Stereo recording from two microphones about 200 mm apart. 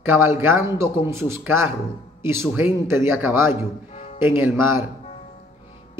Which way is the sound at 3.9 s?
35° left (ahead or behind).